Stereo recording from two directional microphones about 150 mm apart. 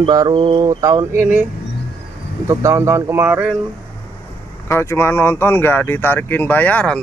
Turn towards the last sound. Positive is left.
turn(degrees=10)  # may be behind; listen again after turning